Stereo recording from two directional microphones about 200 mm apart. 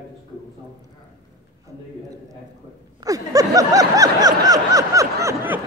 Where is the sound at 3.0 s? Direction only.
15° right (ahead or behind).